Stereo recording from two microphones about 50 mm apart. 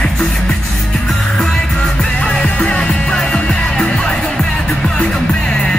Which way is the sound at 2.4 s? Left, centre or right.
Left.